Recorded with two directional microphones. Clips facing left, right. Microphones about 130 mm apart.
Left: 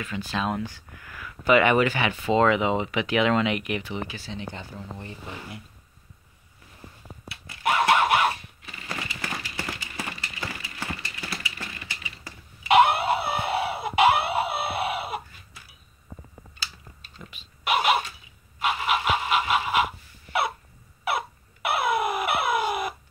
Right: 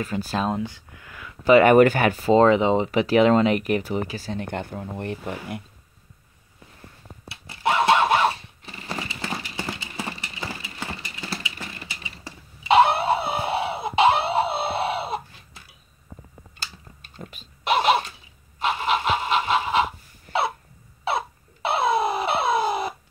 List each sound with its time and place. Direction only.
0.0 s speech: 40° right (ahead or behind)
0.5 s speech: 20° right (ahead or behind); by 5.6 s 55° right (ahead or behind)
7.2 s a sound: 25° right (ahead or behind)
12.8 s chicken: 25° right (ahead or behind)
17.2 s a sound: 40° right (ahead or behind)
18.6 s pant: 30° right (ahead or behind)
21.6 s alarm clock: 25° right (ahead or behind)